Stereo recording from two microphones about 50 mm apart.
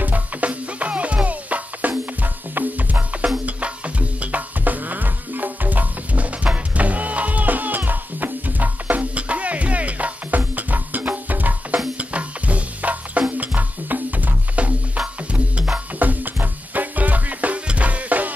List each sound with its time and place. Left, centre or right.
0.0 s music: right